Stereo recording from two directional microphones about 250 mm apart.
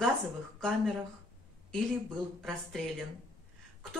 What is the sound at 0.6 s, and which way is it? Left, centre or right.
Speech, centre.